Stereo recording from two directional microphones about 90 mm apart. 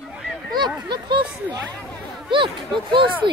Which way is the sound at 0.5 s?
55° right (ahead or behind).